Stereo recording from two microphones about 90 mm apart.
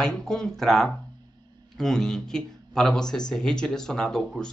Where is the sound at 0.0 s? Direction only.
5° left (ahead or behind).